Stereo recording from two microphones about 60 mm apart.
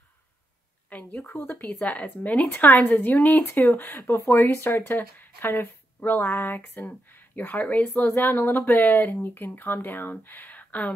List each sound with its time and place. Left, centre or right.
0.8 s speech: left
1.7 s speech: left